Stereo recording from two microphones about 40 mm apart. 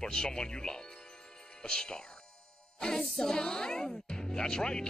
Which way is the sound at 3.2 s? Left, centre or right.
Centre.